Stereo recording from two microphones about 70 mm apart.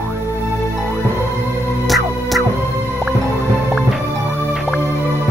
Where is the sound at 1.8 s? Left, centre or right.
Centre.